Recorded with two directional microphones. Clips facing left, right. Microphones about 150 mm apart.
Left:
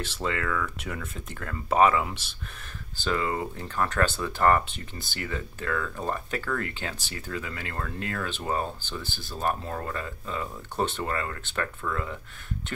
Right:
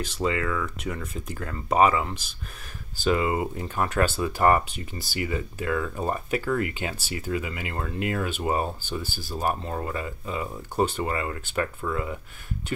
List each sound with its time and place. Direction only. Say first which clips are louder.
0.0 s speech: right 4 dB; 5° right (ahead or behind)
3.1 s speech: right 4 dB; 15° right (ahead or behind)